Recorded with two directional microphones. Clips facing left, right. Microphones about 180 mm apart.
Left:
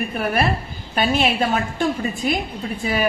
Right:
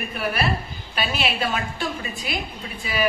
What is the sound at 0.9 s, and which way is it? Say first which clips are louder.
A woman's voice: left 7 dB; 45° left (ahead or behind).